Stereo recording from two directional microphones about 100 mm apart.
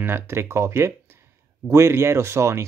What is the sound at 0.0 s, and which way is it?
Speech, 25° right (ahead or behind).